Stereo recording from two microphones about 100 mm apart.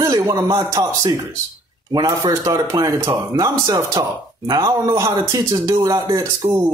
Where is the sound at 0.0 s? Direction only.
35° right (ahead or behind).